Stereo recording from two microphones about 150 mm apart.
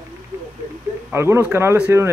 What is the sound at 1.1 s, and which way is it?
Speech, 15° right (ahead or behind).